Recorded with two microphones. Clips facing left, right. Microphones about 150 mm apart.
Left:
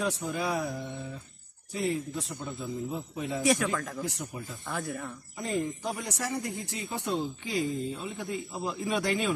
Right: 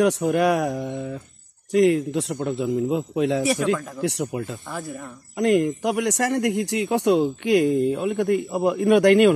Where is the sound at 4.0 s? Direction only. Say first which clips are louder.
Right 11 dB; 85° right.